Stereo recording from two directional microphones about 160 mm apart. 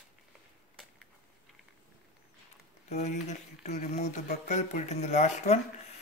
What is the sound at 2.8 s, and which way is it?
Speech, 45° left (ahead or behind).